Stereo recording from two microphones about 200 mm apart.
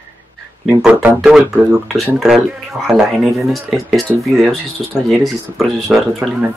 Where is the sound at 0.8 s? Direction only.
5° right (ahead or behind).